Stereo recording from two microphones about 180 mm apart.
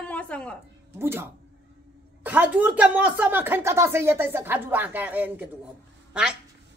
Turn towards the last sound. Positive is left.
turn(degrees=-5)  # may be behind; listen again after turning